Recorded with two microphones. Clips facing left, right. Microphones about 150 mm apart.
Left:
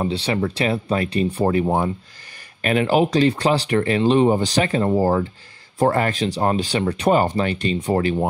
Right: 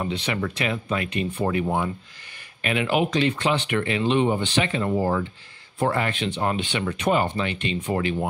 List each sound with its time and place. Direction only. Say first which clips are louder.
0.0 s speech: left 5 dB; 35° left (ahead or behind)